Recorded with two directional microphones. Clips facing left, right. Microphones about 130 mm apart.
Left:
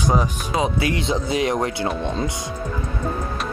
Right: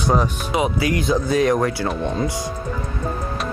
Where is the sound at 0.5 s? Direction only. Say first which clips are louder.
Right 1 dB; 25° left (ahead or behind).